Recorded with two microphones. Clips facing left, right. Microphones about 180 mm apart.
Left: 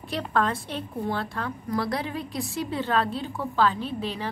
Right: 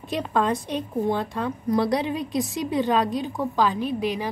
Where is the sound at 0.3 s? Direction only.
15° right (ahead or behind).